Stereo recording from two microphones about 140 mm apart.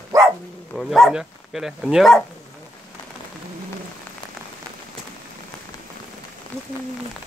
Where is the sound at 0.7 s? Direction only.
Centre (ahead or behind).